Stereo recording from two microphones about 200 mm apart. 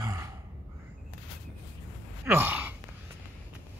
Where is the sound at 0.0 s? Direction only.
15° right (ahead or behind).